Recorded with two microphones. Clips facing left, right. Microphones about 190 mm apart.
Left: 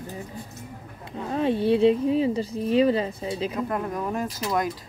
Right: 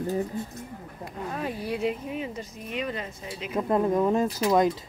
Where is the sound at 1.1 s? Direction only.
25° left (ahead or behind).